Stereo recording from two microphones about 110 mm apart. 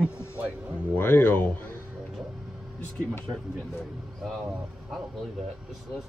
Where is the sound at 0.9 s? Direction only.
20° left (ahead or behind).